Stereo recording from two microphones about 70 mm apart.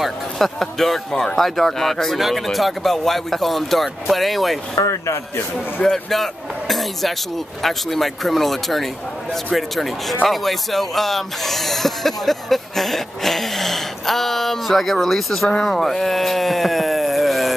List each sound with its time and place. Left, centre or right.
0.0 s speech: centre
4.7 s speech: left
5.8 s speech: centre